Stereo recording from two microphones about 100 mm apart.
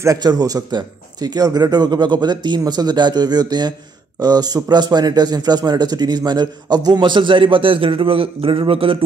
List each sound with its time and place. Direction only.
0.0 s a man's voice: 40° right (ahead or behind); by 9.0 s 65° right (ahead or behind)